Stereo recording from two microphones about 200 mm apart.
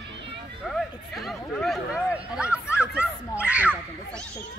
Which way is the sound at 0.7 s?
Centre (ahead or behind).